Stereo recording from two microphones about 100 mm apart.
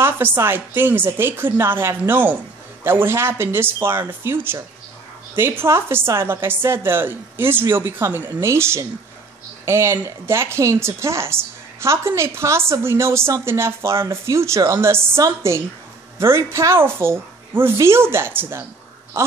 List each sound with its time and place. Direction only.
0.0 s speech: 20° right (ahead or behind)